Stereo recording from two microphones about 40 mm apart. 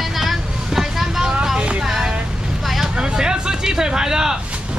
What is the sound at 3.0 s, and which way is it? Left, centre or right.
Speech, centre.